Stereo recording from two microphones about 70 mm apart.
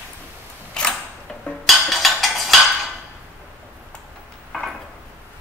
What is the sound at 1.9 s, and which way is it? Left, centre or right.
Cutlery, centre.